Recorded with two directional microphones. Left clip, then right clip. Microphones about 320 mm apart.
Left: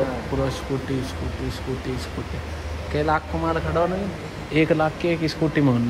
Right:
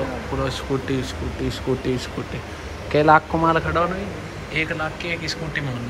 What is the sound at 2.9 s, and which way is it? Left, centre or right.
Speech, centre.